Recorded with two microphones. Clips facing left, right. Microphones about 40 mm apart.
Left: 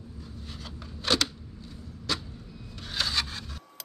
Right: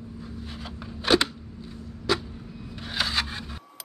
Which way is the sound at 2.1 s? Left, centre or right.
Centre.